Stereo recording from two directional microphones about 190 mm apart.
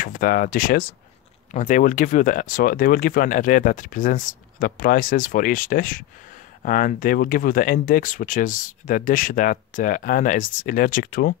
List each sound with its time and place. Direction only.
0.0 s speech: 45° left (ahead or behind)